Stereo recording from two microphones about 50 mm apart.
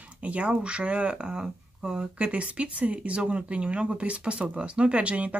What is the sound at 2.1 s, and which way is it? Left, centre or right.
Speech, right.